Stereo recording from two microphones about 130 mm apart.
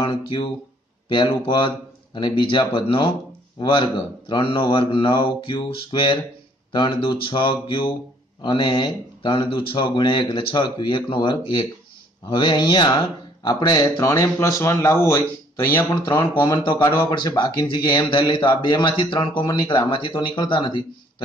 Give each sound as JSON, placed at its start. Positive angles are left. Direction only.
{"t": 0.0, "sound": "speech", "side_deg": 40}